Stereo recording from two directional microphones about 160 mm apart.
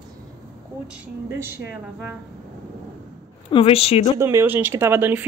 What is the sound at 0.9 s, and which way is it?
Speech, 10° right (ahead or behind).